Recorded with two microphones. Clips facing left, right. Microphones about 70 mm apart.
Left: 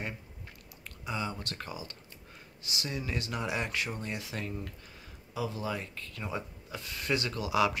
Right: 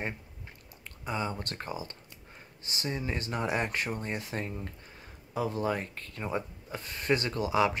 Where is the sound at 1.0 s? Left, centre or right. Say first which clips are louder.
Right 2 dB; right.